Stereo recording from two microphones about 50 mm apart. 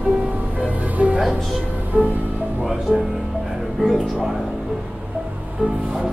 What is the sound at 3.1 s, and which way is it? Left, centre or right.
Music, centre.